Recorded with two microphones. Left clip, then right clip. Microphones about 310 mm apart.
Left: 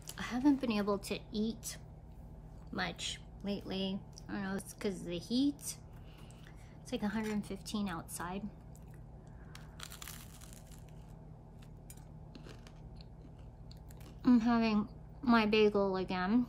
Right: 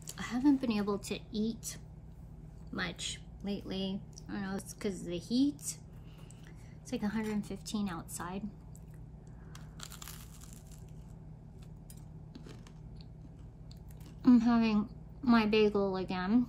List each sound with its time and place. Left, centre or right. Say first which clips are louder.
0.0 s a woman's voice: right 1 dB; centre
6.9 s a woman's voice: right 1 dB; centre
9.8 s crushing: even; centre
14.2 s a woman's voice: right 3 dB; centre